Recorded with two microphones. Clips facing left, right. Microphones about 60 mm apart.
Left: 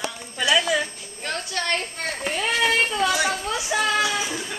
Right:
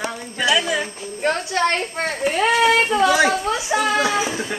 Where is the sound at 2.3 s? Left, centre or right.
Right.